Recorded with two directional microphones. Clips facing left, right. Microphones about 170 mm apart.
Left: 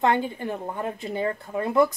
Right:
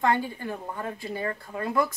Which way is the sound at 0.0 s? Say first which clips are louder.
Left 2 dB; 20° left (ahead or behind).